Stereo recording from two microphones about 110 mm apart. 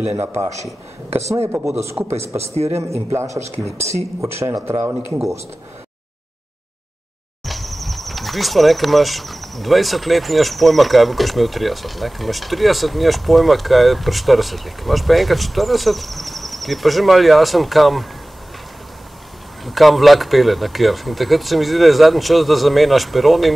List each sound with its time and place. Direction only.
0.2 s speech: 20° right (ahead or behind)
2.4 s a man's voice: 70° right (ahead or behind)
3.1 s speech: 25° right (ahead or behind)
7.4 s speech: centre (ahead or behind)
19.6 s speech: centre (ahead or behind)